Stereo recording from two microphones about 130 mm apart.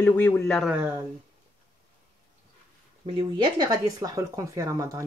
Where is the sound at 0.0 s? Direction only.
15° left (ahead or behind).